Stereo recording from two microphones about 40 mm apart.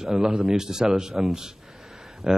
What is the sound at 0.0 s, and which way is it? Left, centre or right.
Speech, centre.